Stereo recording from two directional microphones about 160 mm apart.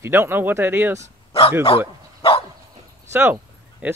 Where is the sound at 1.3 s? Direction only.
35° left (ahead or behind).